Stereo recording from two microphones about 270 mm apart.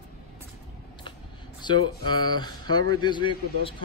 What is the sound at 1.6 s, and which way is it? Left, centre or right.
Speech, centre.